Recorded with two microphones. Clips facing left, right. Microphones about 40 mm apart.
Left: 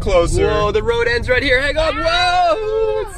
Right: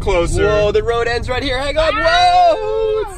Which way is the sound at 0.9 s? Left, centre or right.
Centre.